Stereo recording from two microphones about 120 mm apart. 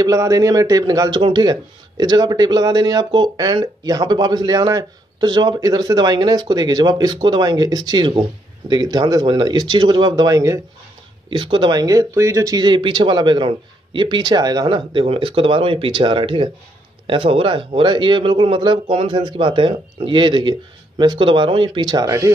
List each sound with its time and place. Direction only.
0.0 s speech: 30° right (ahead or behind)
11.2 s a man's voice: 45° right (ahead or behind)
22.0 s speech: 25° right (ahead or behind)